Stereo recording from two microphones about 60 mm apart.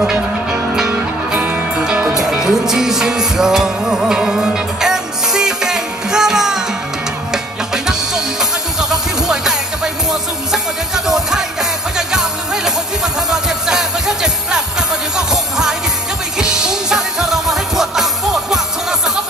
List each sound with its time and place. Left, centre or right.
0.0 s music: centre
2.1 s music: centre
7.7 s music: centre
11.1 s music: centre